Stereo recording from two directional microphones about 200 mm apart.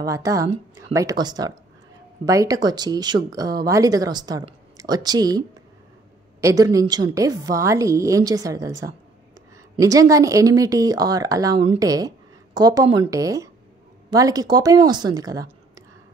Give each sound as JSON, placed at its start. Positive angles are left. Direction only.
{"t": 0.0, "sound": "a woman's voice", "side_deg": -15}
{"t": 6.4, "sound": "a woman's voice", "side_deg": -15}